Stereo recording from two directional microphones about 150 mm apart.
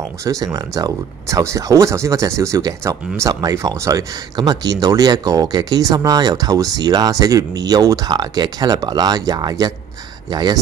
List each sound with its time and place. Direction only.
0.2 s speech: 20° right (ahead or behind)